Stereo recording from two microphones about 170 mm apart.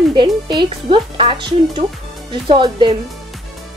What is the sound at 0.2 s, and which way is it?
Speech, 25° right (ahead or behind).